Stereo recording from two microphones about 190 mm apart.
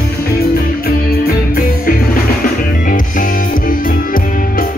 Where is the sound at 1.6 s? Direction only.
50° left (ahead or behind).